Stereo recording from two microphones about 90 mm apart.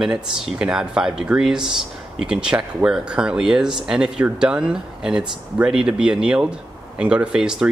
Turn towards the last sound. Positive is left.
turn(degrees=-10)  # may be behind; listen again after turning